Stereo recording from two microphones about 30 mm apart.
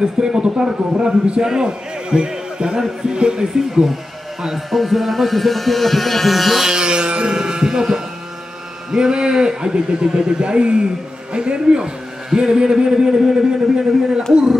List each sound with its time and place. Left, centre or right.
0.0 s a man's voice: right
1.4 s a man's voice: right
1.7 s a man's voice: right
3.5 s speech: centre
6.7 s a man's voice: right
8.9 s a man's voice: right